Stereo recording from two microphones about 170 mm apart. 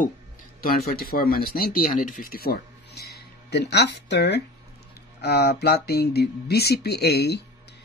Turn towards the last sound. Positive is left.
turn(degrees=75)  # may be behind; listen again after turning